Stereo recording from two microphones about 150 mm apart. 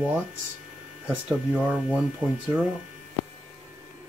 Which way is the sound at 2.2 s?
30° right (ahead or behind).